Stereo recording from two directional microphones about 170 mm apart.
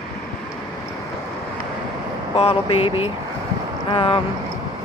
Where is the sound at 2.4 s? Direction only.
35° left (ahead or behind).